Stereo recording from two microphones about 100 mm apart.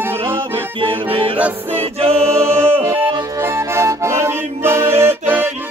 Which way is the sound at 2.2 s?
25° right (ahead or behind).